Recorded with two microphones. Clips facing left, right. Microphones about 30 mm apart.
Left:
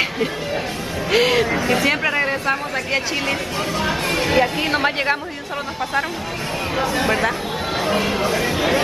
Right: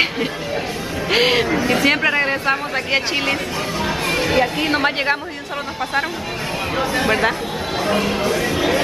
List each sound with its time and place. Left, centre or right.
1.1 s music: centre
1.6 s chatter: centre
1.9 s speech: right
3.8 s speech: centre
6.8 s speech: centre